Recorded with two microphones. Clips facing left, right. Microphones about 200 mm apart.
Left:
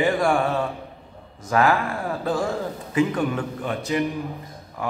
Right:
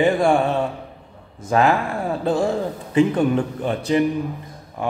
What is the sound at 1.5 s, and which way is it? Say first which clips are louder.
A man's voice: right 2 dB; 25° right (ahead or behind).